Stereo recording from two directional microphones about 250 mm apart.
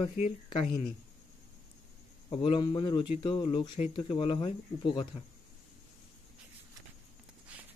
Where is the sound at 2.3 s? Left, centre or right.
Centre.